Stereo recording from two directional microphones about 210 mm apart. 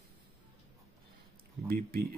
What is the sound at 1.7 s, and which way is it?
Speech, 45° right (ahead or behind).